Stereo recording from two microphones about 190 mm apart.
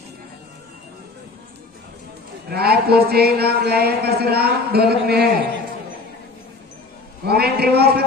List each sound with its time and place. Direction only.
2.5 s speech: 55° right (ahead or behind)
7.2 s speech: 55° right (ahead or behind)